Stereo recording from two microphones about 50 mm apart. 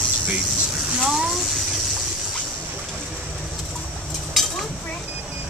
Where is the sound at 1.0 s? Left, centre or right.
Centre.